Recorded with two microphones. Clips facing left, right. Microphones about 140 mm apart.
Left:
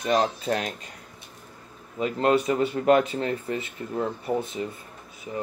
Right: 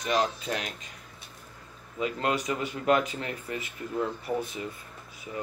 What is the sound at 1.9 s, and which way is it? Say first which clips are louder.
Speech: left 6 dB; 35° left (ahead or behind).